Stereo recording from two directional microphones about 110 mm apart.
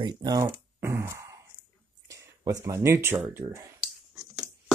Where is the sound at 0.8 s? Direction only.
25° right (ahead or behind).